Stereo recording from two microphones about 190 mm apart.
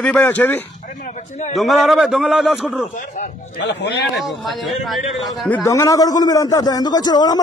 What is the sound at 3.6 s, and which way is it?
Speech, 65° left (ahead or behind).